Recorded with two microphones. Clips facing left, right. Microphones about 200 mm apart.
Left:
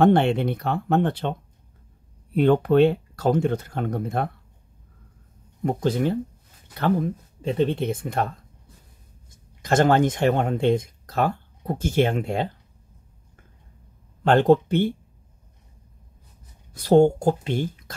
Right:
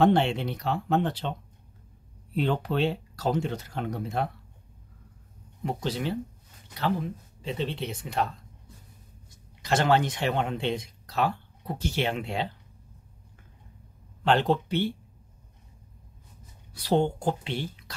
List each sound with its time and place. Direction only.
0.0 s speech: 55° left (ahead or behind)
2.3 s speech: 55° left (ahead or behind)
5.6 s speech: 50° left (ahead or behind)
9.3 s speech: 50° left (ahead or behind)
14.2 s speech: 50° left (ahead or behind)
16.7 s speech: 45° left (ahead or behind)